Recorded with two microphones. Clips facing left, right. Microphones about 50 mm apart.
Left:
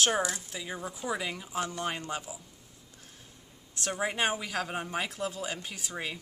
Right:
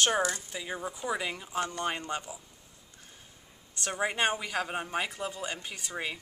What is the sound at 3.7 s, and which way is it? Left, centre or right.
Speech, centre.